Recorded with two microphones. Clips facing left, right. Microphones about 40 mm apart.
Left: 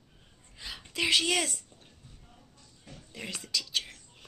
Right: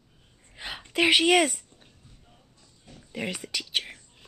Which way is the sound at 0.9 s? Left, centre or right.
Right.